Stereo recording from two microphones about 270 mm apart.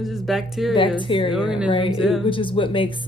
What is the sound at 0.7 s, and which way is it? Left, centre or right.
Speech, centre.